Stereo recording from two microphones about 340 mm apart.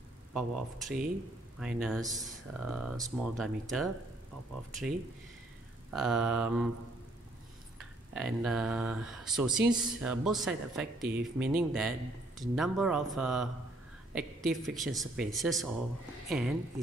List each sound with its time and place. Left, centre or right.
0.3 s speech: centre
5.9 s speech: centre
8.1 s speech: centre